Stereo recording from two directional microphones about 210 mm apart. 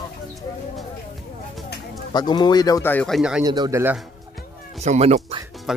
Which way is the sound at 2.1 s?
20° left (ahead or behind).